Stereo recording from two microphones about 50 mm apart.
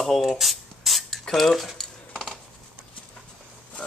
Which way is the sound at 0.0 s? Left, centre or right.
Centre.